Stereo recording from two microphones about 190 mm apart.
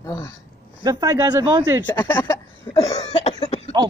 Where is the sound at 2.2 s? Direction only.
20° left (ahead or behind).